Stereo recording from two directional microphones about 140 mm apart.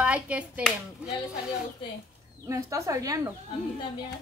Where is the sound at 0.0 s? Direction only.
10° right (ahead or behind).